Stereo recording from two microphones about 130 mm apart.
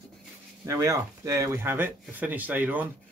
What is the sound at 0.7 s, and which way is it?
Speech, 25° right (ahead or behind).